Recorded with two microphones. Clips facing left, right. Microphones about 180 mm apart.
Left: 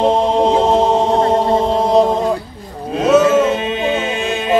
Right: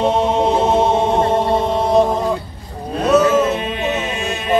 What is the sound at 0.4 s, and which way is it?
Chant, 35° left (ahead or behind).